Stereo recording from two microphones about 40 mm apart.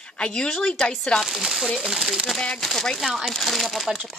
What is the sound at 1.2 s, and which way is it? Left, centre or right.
Speech, centre.